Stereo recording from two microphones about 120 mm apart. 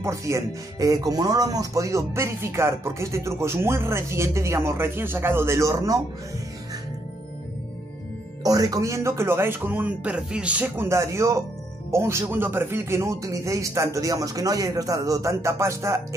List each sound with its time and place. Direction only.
0.0 s speech: 25° right (ahead or behind)
8.5 s speech: 30° right (ahead or behind)